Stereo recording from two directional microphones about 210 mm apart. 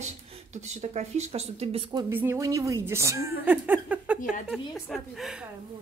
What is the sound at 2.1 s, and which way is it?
A woman's voice, 10° right (ahead or behind).